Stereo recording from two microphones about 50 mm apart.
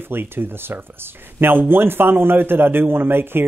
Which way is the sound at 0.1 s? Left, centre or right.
Right.